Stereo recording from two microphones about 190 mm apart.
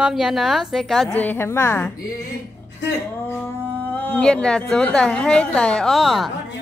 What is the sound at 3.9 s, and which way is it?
A woman's voice, 10° left (ahead or behind).